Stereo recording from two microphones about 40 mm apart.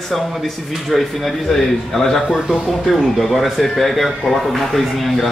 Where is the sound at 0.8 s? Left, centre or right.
Centre.